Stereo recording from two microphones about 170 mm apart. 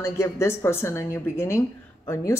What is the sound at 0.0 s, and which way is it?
A woman's voice, 15° left (ahead or behind).